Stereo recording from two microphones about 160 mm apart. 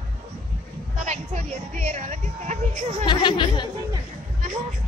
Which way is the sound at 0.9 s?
50° right (ahead or behind).